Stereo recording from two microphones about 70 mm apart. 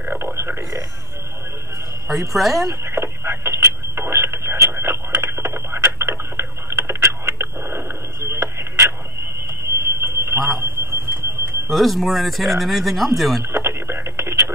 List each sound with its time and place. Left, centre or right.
0.0 s a sound: right
2.0 s speech: centre
2.7 s radio: right
9.7 s a sound: right
11.6 s speech: centre
13.4 s radio: right